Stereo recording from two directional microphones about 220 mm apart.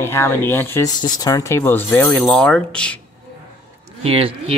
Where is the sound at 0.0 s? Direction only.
10° left (ahead or behind).